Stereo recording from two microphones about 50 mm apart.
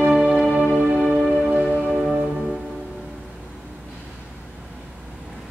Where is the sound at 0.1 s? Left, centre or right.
Centre.